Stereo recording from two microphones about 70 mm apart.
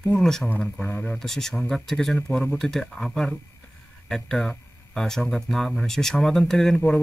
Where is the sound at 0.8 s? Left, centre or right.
Left.